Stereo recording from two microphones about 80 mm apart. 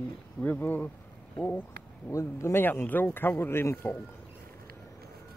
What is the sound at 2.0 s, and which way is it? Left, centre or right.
Speech, left.